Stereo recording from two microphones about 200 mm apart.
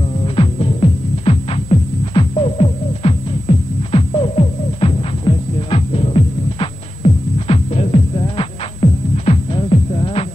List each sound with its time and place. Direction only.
0.2 s music: 25° left (ahead or behind)